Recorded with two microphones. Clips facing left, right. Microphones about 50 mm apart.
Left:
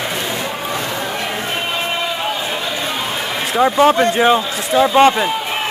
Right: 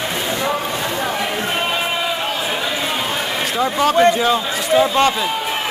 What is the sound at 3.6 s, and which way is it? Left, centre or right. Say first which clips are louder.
Speech: left 2 dB; left.